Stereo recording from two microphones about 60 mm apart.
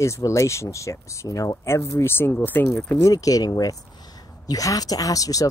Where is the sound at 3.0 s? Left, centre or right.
Left.